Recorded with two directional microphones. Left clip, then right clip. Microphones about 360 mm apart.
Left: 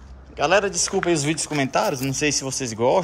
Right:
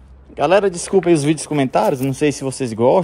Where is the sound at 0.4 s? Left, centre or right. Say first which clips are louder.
Right 4 dB; centre.